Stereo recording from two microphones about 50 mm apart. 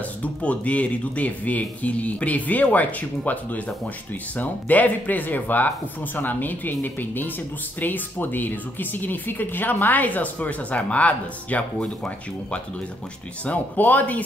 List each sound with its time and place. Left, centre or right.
0.2 s a woman's voice: left
13.5 s a woman's voice: left